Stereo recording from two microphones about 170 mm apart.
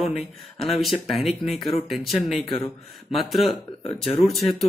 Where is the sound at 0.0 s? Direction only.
Centre (ahead or behind).